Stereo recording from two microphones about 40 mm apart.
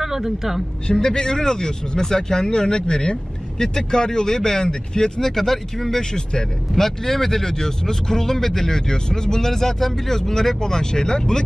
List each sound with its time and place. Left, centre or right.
0.0 s speech: centre
0.8 s speech: centre